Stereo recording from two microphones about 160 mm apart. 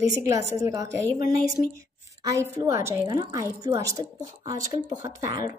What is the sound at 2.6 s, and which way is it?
A woman's voice, 20° right (ahead or behind).